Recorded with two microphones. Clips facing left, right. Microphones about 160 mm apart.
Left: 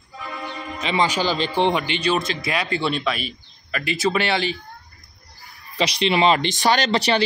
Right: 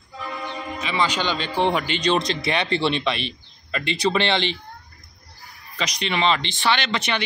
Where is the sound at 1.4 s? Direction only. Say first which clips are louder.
Left 2 dB; 5° right (ahead or behind).